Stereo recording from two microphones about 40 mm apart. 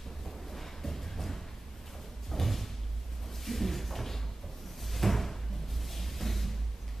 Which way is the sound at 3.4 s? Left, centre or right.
Centre.